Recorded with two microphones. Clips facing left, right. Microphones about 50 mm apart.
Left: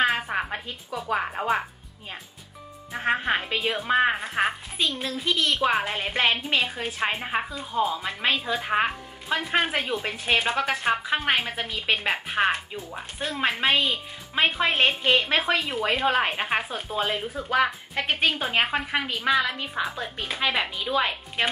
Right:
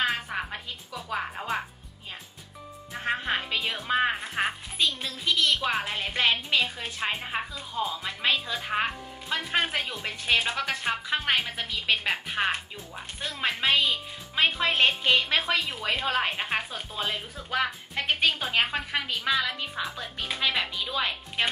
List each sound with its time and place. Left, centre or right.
0.0 s music: centre
2.9 s music: centre
3.2 s a woman's voice: centre